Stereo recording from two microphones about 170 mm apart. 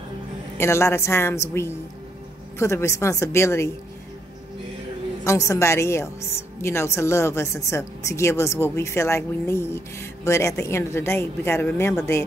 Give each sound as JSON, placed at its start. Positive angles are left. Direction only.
{"t": 0.6, "sound": "speech", "side_deg": 15}
{"t": 5.2, "sound": "speech", "side_deg": 20}